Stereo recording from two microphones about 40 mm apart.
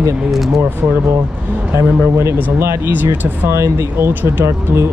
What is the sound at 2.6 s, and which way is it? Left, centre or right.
Speech, right.